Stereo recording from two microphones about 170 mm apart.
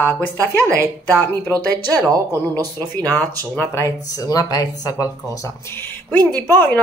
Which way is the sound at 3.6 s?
15° left (ahead or behind).